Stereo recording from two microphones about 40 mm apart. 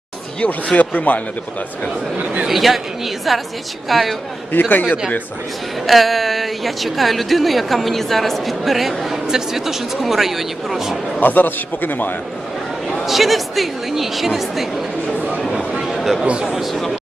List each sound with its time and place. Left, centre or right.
0.7 s a man's voice: left
2.4 s speech: centre
4.5 s a man's voice: left
5.9 s speech: centre
11.1 s a man's voice: left
13.0 s speech: centre
15.9 s a sound: centre
16.3 s speech: right
16.5 s speech: centre